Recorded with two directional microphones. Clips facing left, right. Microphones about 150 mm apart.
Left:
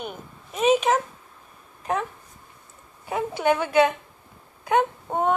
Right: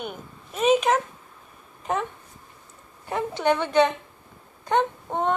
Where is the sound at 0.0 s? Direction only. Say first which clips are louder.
Even; 5° left (ahead or behind).